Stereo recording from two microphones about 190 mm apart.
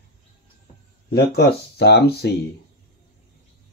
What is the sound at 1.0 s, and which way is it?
Speech, 55° left (ahead or behind).